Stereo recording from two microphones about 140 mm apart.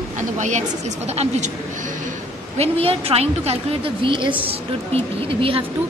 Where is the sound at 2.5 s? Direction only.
45° right (ahead or behind).